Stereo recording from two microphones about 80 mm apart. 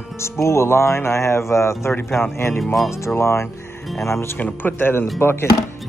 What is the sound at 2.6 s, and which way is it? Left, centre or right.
Speech, centre.